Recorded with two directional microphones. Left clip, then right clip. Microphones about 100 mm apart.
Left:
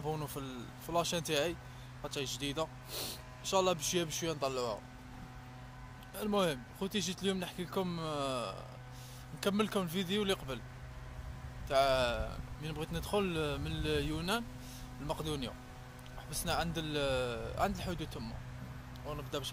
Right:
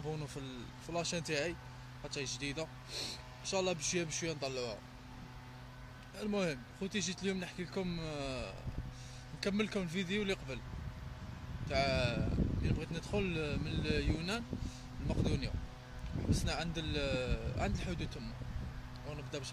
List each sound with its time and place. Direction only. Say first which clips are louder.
0.0 s speech: left 4 dB; 25° right (ahead or behind)
6.1 s speech: left 4 dB; 20° right (ahead or behind)
11.7 s speech: left 5 dB; 20° right (ahead or behind)